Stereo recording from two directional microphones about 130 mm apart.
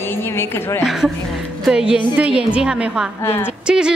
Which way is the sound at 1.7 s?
5° right (ahead or behind).